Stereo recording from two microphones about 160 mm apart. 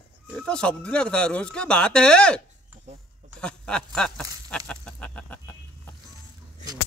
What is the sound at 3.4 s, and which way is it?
Speech, 5° left (ahead or behind).